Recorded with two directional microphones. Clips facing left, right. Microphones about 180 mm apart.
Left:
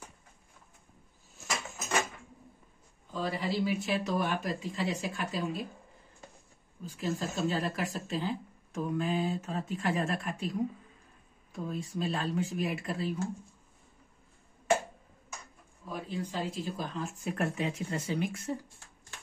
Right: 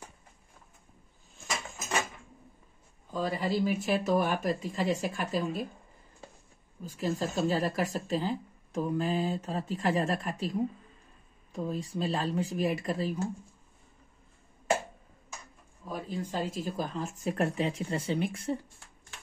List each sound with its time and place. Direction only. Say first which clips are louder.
3.1 s speech: right 3 dB; 45° right (ahead or behind)
7.0 s speech: right 3 dB; 40° right (ahead or behind)
15.9 s speech: right 2 dB; 45° right (ahead or behind)